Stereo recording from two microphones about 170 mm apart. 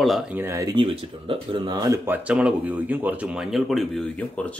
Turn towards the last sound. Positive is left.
turn(degrees=5)  # may be behind; listen again after turning